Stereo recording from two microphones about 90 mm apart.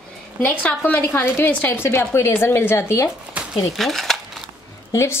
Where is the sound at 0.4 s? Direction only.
15° left (ahead or behind).